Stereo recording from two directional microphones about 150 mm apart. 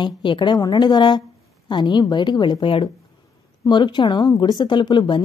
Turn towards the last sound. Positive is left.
turn(degrees=30)  # may be behind; listen again after turning